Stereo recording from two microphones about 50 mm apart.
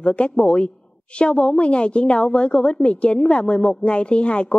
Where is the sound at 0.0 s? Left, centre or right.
Left.